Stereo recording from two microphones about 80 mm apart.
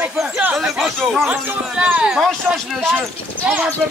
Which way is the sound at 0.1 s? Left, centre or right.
Centre.